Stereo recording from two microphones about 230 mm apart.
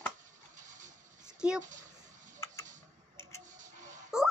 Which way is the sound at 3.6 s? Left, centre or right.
Right.